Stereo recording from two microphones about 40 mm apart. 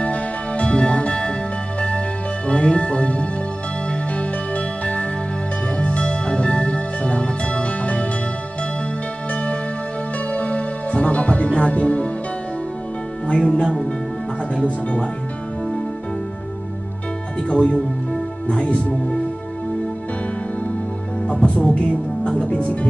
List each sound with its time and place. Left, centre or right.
0.0 s music: left
2.4 s music: left
9.3 s music: left
13.3 s music: centre
17.4 s music: left
21.3 s music: left